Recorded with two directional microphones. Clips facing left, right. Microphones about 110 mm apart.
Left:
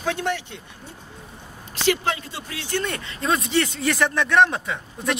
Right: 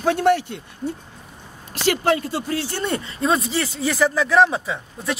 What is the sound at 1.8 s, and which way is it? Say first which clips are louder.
Speech: right 3 dB; 45° right (ahead or behind).